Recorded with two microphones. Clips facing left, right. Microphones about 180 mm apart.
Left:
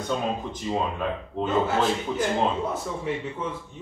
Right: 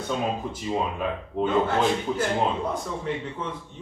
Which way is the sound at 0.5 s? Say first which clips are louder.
Even; 5° right (ahead or behind).